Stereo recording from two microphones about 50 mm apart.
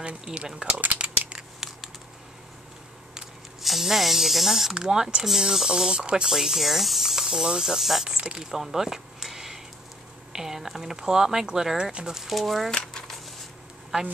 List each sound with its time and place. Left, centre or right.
0.3 s speech: centre
0.9 s a sound: right
1.3 s crumpling: centre
3.6 s speech: centre
6.3 s speech: centre
8.2 s speech: centre
8.5 s a sound: centre
10.3 s speech: centre
12.2 s speech: centre
12.9 s a sound: centre